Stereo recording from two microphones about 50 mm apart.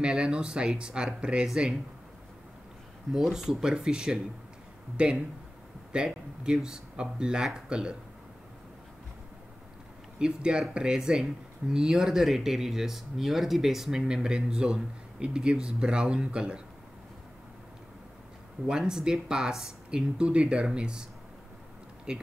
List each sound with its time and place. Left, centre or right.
0.0 s speech: centre
3.1 s speech: centre
10.1 s speech: centre
18.7 s speech: centre